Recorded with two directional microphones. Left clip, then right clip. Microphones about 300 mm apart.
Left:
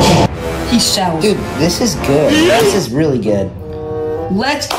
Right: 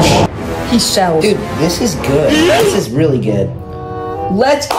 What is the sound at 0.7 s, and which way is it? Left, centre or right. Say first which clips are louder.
Speech: right 1 dB; centre.